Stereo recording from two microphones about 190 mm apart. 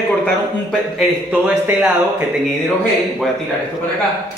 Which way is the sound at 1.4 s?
10° right (ahead or behind).